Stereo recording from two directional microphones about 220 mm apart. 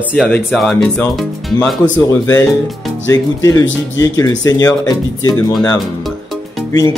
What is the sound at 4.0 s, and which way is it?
Speech, 15° left (ahead or behind).